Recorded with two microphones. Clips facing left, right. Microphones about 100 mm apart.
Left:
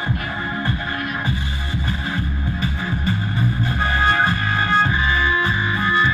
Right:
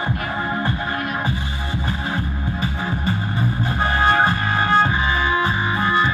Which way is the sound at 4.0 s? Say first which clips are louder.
Right 2 dB; 20° right (ahead or behind).